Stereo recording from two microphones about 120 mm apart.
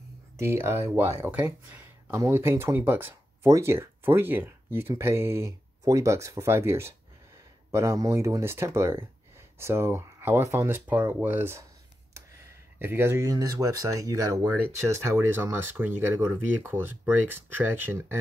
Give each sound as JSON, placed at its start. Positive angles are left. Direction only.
{"t": 0.4, "sound": "speech", "side_deg": -20}
{"t": 12.7, "sound": "speech", "side_deg": -20}